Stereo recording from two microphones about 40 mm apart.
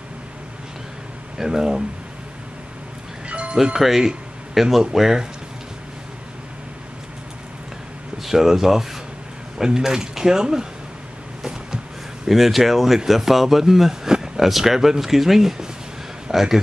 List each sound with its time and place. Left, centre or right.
1.4 s speech: centre
3.3 s music: right
3.8 s speech: centre
8.2 s speech: centre
12.3 s a man's voice: centre